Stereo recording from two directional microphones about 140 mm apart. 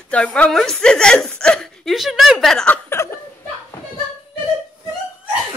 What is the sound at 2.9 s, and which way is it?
Chuckle, 20° left (ahead or behind).